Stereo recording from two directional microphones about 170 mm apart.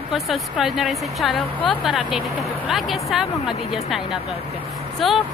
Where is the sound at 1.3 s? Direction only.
30° left (ahead or behind).